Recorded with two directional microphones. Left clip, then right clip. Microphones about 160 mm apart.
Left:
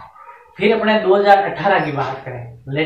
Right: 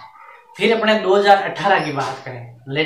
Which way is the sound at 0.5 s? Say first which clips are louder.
Left 1 dB; 25° right (ahead or behind).